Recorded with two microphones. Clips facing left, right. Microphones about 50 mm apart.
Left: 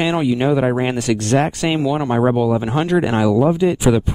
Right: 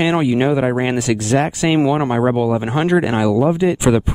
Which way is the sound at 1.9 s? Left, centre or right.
Centre.